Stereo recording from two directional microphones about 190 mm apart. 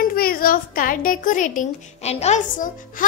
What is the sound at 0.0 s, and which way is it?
A child's voice, 50° left (ahead or behind).